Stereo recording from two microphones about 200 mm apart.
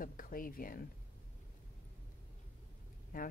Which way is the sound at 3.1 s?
45° left (ahead or behind).